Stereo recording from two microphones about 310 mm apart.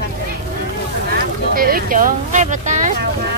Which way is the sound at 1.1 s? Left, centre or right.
Right.